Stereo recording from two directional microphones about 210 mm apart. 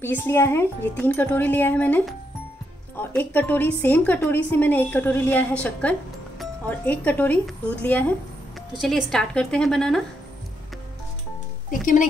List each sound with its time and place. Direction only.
0.0 s a woman's voice: 10° left (ahead or behind)
11.7 s speech: 40° left (ahead or behind)